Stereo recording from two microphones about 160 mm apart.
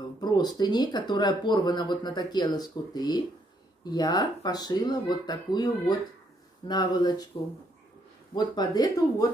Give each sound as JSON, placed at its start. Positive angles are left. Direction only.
{"t": 0.2, "sound": "speech", "side_deg": 25}
{"t": 8.4, "sound": "speech", "side_deg": 25}